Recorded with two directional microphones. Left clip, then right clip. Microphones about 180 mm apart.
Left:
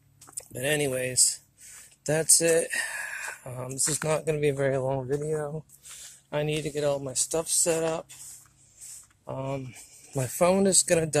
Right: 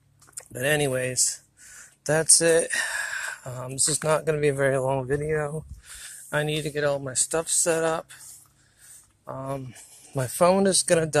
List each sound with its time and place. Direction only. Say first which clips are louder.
0.4 s a sound: right 3 dB; centre (ahead or behind)
3.9 s speech: right 4 dB; centre (ahead or behind)
5.4 s speech: right 4 dB; 25° right (ahead or behind)
5.9 s speech: right 4 dB; centre (ahead or behind)
9.2 s speech: right 1 dB; centre (ahead or behind)